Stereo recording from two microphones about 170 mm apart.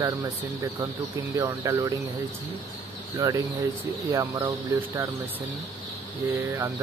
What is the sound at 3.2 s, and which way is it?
Speech, 20° right (ahead or behind).